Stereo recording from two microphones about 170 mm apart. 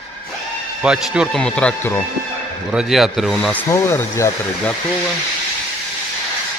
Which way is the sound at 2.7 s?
Centre (ahead or behind).